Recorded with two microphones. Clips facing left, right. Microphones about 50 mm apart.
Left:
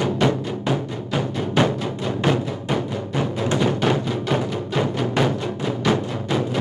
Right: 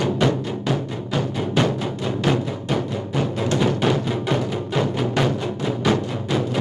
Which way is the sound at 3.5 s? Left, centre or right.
Centre.